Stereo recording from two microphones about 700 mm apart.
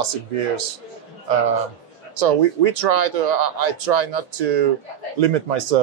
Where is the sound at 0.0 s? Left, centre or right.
Right.